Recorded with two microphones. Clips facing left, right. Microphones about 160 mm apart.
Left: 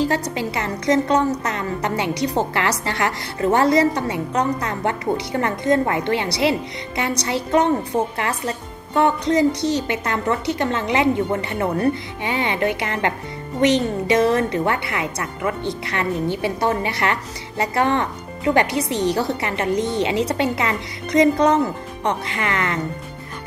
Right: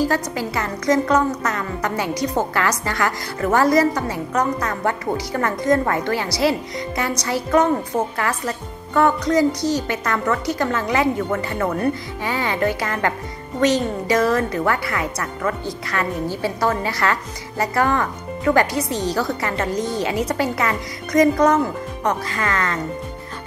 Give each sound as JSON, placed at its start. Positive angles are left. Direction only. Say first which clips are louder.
{"t": 0.0, "sound": "a woman's voice", "louder": "even", "side_deg": 25}